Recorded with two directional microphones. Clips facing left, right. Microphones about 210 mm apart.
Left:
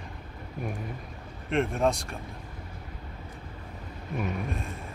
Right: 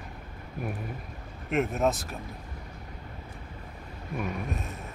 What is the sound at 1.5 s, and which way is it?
Speech, 5° right (ahead or behind).